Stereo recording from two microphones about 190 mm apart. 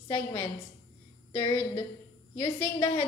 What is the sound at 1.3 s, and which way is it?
A woman's voice, 25° left (ahead or behind).